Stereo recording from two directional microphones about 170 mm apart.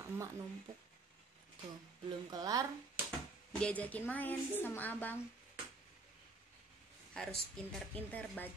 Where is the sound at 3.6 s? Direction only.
10° left (ahead or behind).